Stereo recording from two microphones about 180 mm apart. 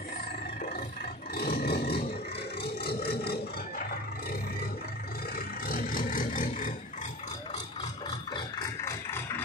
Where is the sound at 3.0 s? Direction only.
60° left (ahead or behind).